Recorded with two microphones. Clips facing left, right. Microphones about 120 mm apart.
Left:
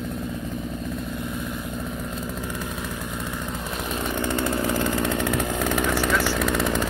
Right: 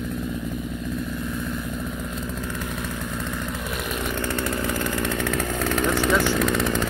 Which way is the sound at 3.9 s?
20° left (ahead or behind).